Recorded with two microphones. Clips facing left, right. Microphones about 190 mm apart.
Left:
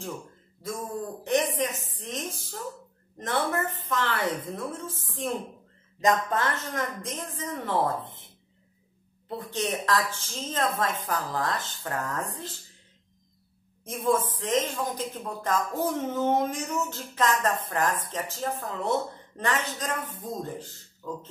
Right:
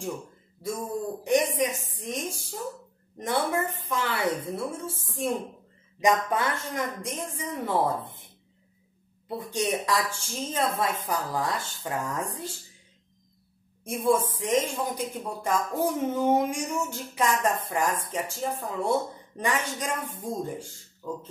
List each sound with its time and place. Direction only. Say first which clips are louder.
0.7 s speech: right 2 dB; 10° right (ahead or behind)
9.3 s speech: right 2 dB; 10° right (ahead or behind)
13.9 s speech: right 2 dB; 10° right (ahead or behind)